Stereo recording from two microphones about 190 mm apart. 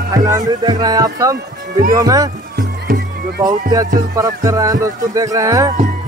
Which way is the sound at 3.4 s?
20° right (ahead or behind).